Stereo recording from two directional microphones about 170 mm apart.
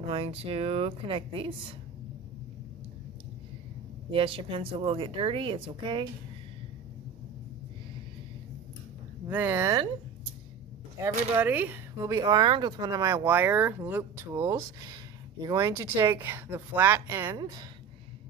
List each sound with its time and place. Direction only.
0.0 s a woman's voice: 35° right (ahead or behind)
4.1 s a woman's voice: 30° right (ahead or behind)
9.3 s speech: 10° right (ahead or behind)
11.0 s speech: 15° right (ahead or behind)
12.0 s speech: 20° right (ahead or behind)